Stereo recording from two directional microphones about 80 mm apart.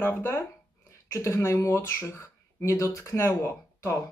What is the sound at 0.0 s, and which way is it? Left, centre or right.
Speech, left.